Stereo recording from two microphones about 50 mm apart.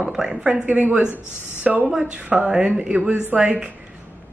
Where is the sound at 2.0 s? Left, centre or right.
Right.